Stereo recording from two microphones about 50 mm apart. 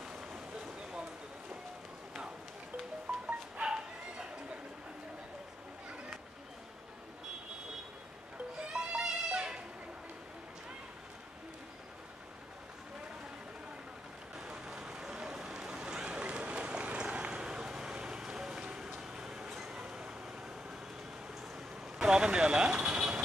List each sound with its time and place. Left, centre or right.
0.0 s a sound: centre
3.3 s dog: right
8.5 s music: centre
14.4 s a sound: centre
18.9 s vehicle: centre
21.9 s vehicle: centre